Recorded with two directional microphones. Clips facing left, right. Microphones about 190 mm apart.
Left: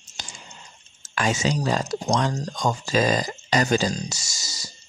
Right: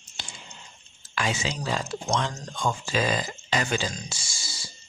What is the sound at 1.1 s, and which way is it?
Speech, 45° left (ahead or behind).